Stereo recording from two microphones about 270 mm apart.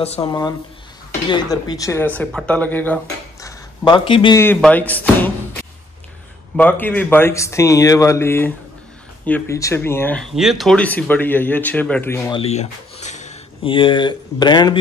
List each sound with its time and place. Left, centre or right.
0.0 s speech: left; by 5.3 s centre
6.5 s speech: centre
12.4 s speech: left